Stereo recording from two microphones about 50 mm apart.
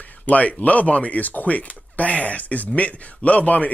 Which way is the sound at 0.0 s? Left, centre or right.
Left.